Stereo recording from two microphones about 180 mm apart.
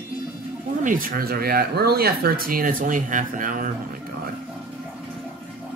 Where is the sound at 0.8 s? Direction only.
50° right (ahead or behind).